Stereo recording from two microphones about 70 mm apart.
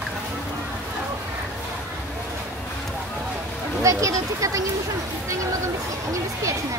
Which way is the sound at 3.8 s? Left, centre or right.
Right.